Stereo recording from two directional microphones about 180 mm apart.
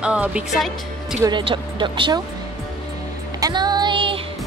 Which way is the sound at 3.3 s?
20° right (ahead or behind).